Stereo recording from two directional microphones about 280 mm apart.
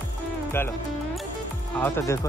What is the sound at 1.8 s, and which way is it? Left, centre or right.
Speech, centre.